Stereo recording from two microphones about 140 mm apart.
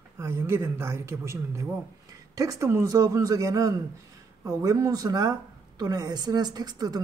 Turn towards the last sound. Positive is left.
turn(degrees=-30)  # may be behind; listen again after turning